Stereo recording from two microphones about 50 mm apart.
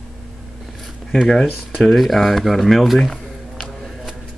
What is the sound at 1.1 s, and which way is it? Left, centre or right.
Speech, centre.